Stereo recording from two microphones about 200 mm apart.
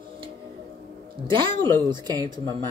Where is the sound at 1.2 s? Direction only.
25° right (ahead or behind).